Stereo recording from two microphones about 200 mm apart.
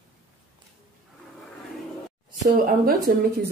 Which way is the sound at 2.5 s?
45° right (ahead or behind).